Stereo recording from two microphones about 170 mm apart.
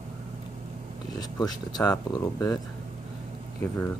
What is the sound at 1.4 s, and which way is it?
Speech, 25° left (ahead or behind).